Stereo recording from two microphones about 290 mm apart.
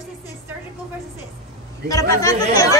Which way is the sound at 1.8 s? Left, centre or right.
Centre.